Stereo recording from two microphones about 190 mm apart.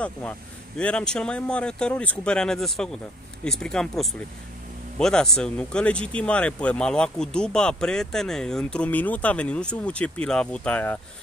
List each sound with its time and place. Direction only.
0.7 s speech: 5° left (ahead or behind)